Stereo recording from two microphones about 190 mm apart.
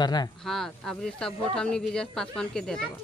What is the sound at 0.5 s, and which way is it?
Speech, centre (ahead or behind).